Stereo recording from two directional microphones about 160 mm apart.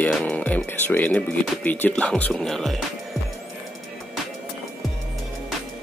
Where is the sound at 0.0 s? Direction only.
10° left (ahead or behind).